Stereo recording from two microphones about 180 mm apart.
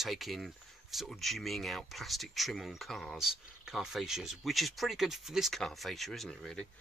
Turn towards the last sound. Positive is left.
turn(degrees=5)  # may be behind; listen again after turning